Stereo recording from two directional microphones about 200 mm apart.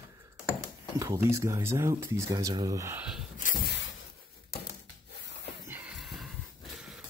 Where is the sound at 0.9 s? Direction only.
15° right (ahead or behind).